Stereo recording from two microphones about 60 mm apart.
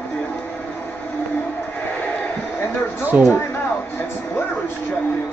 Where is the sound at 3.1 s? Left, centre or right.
Right.